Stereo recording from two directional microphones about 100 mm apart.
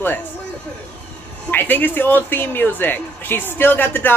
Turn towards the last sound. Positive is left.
turn(degrees=20)  # may be behind; listen again after turning